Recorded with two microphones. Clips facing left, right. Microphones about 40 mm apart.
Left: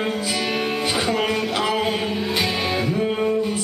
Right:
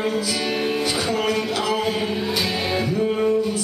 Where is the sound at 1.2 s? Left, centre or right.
Centre.